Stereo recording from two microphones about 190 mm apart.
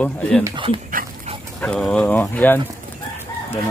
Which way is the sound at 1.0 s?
50° right (ahead or behind).